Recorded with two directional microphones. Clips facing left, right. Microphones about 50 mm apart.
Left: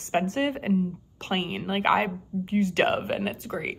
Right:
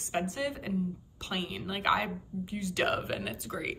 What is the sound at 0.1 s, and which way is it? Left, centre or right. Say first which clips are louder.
A woman's voice: left 7 dB; left.